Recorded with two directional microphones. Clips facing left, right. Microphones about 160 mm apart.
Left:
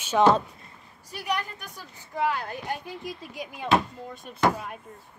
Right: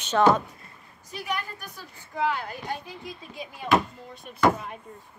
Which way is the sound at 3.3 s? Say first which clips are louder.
Left 2 dB; 15° left (ahead or behind).